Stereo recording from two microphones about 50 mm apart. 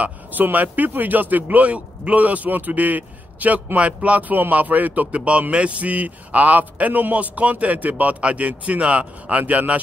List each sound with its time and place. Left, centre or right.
0.0 s speech: right